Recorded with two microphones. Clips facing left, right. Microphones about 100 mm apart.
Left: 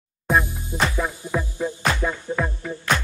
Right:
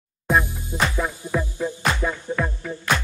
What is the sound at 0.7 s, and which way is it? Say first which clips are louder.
Music: even; 20° right (ahead or behind).